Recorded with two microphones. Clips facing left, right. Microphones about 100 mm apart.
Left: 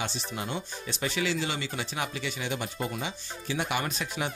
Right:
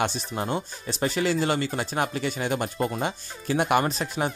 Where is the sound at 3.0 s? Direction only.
50° right (ahead or behind).